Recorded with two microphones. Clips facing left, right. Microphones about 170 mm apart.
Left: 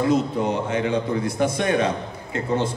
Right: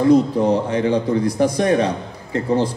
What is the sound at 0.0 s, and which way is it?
A man's voice, 35° right (ahead or behind).